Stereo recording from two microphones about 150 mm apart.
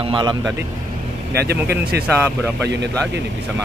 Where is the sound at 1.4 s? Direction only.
90° right.